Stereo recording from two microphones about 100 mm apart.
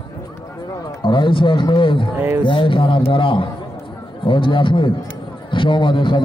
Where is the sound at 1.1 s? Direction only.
55° left (ahead or behind).